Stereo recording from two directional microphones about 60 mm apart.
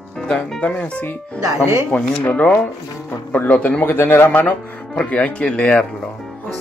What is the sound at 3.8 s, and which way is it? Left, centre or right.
Speech, left.